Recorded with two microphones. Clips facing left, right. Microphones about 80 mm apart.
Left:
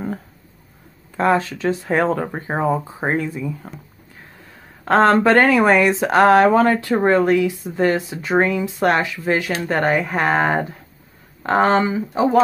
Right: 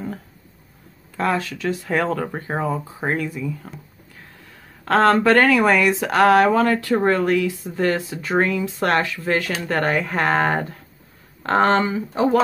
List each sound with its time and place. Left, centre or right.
1.1 s speech: left
4.8 s speech: left